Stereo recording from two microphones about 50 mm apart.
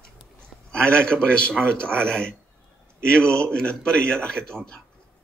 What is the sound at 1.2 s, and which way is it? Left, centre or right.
Speech, centre.